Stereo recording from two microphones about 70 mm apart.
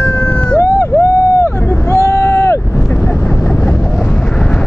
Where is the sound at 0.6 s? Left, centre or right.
Left.